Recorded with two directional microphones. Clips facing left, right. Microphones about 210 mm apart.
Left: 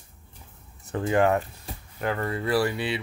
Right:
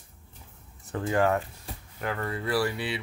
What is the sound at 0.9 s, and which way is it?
Speech, 20° left (ahead or behind).